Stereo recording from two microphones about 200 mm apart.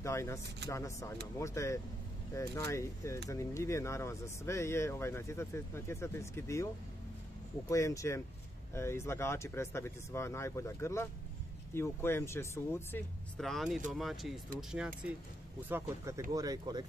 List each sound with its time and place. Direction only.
0.0 s speech: 15° left (ahead or behind)
7.7 s speech: 15° left (ahead or behind)
13.4 s speech: centre (ahead or behind)
16.3 s speech: 20° right (ahead or behind)